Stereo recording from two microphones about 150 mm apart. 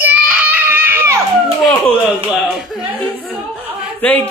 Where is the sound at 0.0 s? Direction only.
10° right (ahead or behind).